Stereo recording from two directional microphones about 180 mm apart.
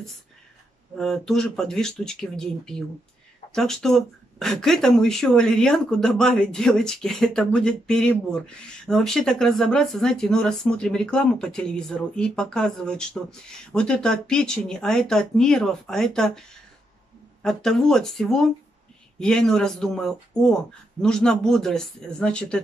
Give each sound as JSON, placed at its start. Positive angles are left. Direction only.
{"t": 0.9, "sound": "speech", "side_deg": 5}